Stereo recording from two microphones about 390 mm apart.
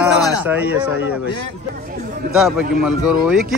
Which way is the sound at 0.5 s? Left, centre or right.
Centre.